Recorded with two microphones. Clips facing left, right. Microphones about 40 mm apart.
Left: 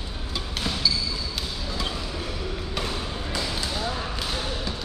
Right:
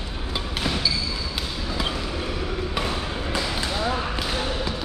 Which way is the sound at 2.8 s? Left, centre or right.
Centre.